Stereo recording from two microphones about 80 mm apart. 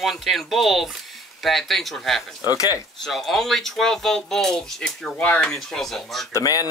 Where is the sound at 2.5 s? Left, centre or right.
Left.